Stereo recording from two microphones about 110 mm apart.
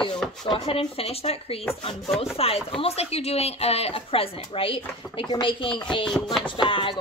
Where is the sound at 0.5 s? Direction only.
60° left (ahead or behind).